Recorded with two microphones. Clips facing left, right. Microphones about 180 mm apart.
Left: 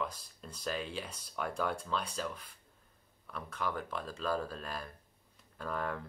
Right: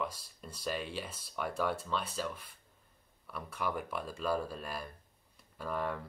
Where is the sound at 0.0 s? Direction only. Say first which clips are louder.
Even; 5° right (ahead or behind).